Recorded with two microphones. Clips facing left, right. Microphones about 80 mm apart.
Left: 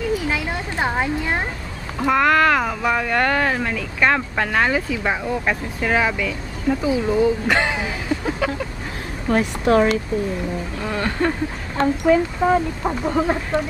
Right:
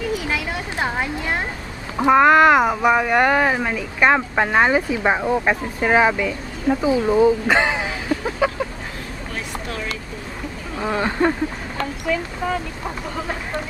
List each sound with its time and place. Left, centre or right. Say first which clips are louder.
0.3 s a sound: left 1 dB; centre
2.0 s speech: right 4 dB; right
10.8 s speech: right 3 dB; centre
11.8 s speech: left 8 dB; left